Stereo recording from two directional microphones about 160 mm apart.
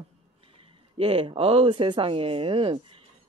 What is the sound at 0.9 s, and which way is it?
A woman's voice, 35° right (ahead or behind).